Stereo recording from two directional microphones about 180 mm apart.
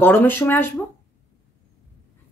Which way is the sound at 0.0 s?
10° left (ahead or behind).